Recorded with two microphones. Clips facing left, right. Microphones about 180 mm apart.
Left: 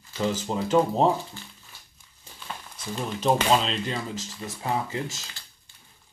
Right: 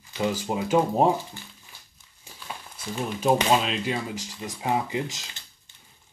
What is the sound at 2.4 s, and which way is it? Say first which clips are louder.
Speech: even; 10° right (ahead or behind).